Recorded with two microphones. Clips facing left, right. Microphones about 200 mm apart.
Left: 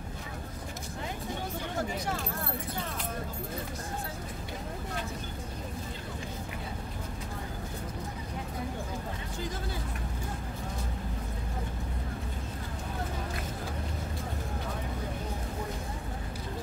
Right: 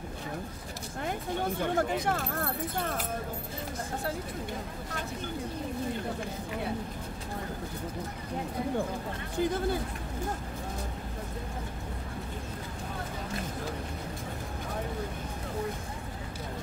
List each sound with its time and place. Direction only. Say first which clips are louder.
1.6 s speech: right 6 dB; 55° right (ahead or behind)
9.4 s speech: right 11 dB; 55° right (ahead or behind)